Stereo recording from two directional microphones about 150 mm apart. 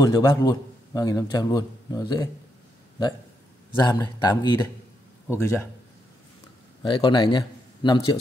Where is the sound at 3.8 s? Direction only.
25° left (ahead or behind).